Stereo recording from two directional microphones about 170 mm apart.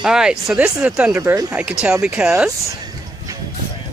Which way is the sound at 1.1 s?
15° right (ahead or behind).